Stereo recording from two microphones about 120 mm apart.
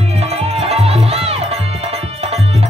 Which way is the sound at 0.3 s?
60° right (ahead or behind).